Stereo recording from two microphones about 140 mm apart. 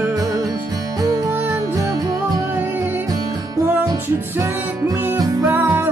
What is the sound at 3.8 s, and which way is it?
Music, 25° right (ahead or behind).